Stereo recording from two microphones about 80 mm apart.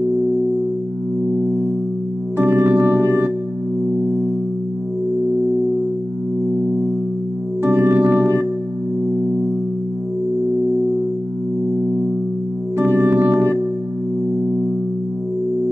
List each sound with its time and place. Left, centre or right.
1.3 s music: right
7.6 s music: right
12.7 s music: right